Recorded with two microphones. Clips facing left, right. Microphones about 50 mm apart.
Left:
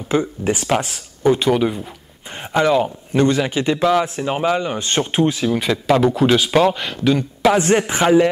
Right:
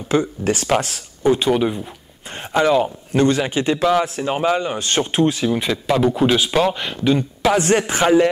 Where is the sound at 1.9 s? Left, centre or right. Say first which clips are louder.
Even; centre.